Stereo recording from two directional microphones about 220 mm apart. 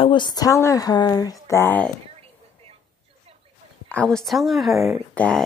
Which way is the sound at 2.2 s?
25° right (ahead or behind).